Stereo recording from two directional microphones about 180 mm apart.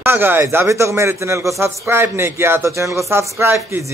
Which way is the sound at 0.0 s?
10° right (ahead or behind).